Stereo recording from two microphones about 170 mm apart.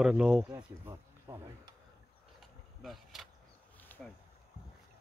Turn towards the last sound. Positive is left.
turn(degrees=10)  # may be behind; listen again after turning